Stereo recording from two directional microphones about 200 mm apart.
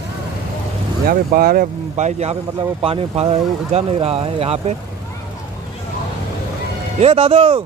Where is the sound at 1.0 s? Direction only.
45° right (ahead or behind); by 4.7 s 30° right (ahead or behind).